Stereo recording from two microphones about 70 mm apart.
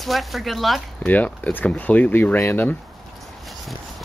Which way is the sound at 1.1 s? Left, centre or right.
Left.